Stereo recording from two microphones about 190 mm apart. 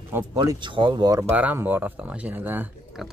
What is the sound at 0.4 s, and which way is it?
Speech, 25° right (ahead or behind).